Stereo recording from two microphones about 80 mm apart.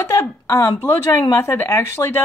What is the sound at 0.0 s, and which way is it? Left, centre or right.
Speech, left.